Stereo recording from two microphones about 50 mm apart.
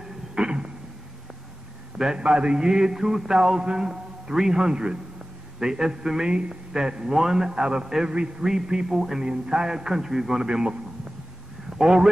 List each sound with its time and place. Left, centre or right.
0.3 s a sound: centre
2.0 s mantra: centre
8.1 s a man's voice: centre
8.5 s mantra: centre
11.8 s mantra: centre